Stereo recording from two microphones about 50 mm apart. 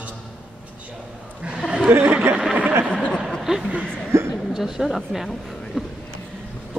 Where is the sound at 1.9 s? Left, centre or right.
Right.